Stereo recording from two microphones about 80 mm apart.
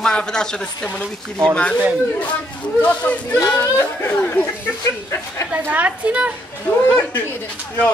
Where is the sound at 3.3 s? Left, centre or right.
Left.